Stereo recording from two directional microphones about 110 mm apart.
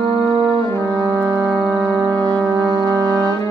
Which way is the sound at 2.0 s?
35° right (ahead or behind).